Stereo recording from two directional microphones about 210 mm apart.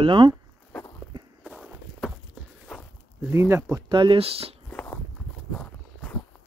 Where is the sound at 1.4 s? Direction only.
5° right (ahead or behind).